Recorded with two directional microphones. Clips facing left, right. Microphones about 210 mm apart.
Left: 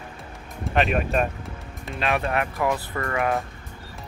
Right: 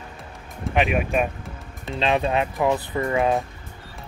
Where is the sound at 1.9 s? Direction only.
20° right (ahead or behind).